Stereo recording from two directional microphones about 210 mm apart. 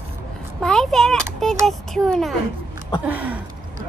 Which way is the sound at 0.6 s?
Centre (ahead or behind).